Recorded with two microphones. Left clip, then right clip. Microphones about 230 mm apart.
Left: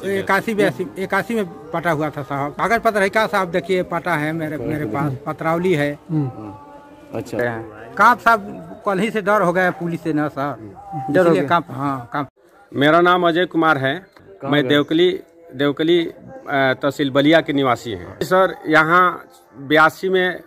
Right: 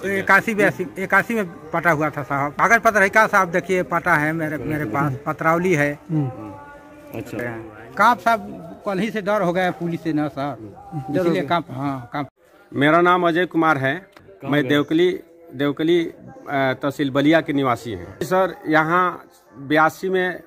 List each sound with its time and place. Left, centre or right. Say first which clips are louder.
0.3 s a man's voice: right 3 dB; centre
7.3 s a man's voice: left 7 dB; left
7.9 s a man's voice: left 3 dB; centre
11.1 s a man's voice: left 6 dB; left
11.3 s a man's voice: left 4 dB; centre